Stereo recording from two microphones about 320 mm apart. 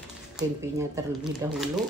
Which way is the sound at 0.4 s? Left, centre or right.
Centre.